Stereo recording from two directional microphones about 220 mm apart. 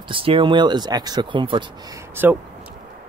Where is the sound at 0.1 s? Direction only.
25° right (ahead or behind).